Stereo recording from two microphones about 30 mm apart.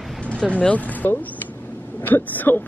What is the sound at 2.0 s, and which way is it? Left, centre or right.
Speech, left.